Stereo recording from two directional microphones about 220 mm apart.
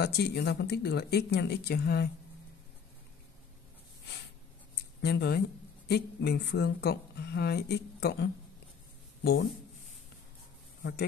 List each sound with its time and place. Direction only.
0.0 s speech: 50° left (ahead or behind)
5.0 s speech: 45° left (ahead or behind)
9.2 s speech: 45° left (ahead or behind)
10.8 s speech: 45° left (ahead or behind)